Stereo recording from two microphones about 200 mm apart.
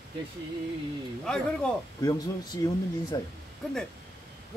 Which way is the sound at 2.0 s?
20° left (ahead or behind).